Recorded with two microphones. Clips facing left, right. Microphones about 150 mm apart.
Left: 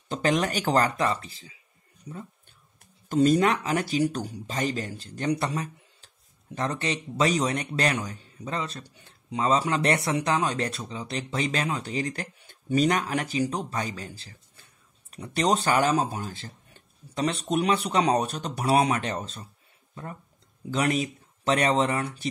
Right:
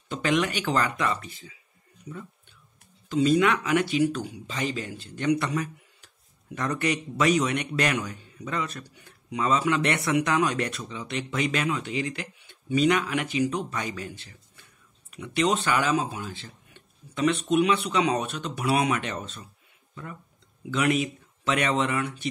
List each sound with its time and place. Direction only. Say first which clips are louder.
0.1 s speech: even; 40° left (ahead or behind)
3.1 s speech: left 1 dB; 45° left (ahead or behind)
20.7 s speech: right 1 dB; 35° left (ahead or behind)